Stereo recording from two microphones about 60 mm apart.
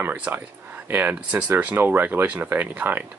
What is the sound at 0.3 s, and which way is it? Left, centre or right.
Speech, right.